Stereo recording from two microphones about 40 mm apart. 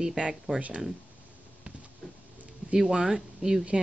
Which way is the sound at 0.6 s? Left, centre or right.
Right.